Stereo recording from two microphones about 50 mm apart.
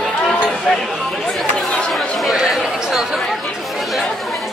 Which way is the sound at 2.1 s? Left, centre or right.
Centre.